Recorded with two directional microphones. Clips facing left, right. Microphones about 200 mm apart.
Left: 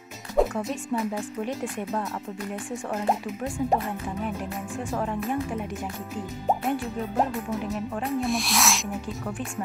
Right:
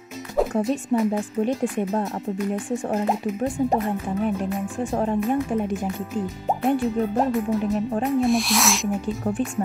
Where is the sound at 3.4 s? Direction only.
30° right (ahead or behind).